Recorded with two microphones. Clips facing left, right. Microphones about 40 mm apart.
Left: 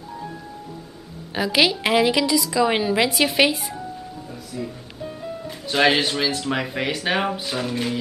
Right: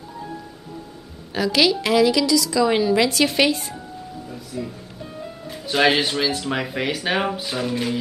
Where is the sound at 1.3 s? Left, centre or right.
Centre.